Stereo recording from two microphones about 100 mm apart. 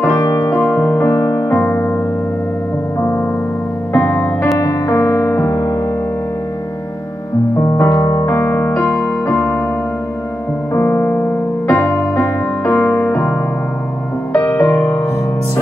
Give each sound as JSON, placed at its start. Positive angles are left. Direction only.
{"t": 0.2, "sound": "music", "side_deg": 30}
{"t": 3.0, "sound": "music", "side_deg": 25}
{"t": 7.6, "sound": "music", "side_deg": 30}
{"t": 10.7, "sound": "music", "side_deg": 20}
{"t": 14.3, "sound": "music", "side_deg": 30}